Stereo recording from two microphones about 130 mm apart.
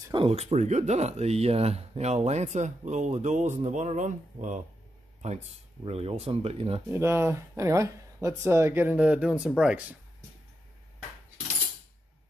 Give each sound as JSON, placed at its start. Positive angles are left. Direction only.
{"t": 0.1, "sound": "speech", "side_deg": -45}
{"t": 5.9, "sound": "speech", "side_deg": -50}
{"t": 6.9, "sound": "speech", "side_deg": -20}